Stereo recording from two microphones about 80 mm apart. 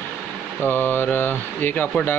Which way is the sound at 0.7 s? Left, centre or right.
Left.